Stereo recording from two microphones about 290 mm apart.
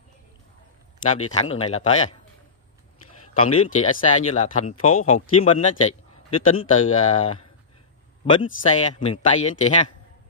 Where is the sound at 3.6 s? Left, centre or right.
Left.